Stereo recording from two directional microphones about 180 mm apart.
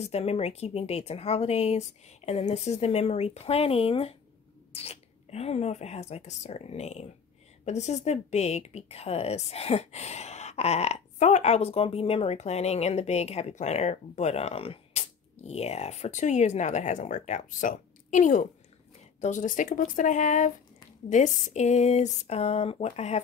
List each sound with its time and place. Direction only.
0.0 s a woman's voice: 35° left (ahead or behind)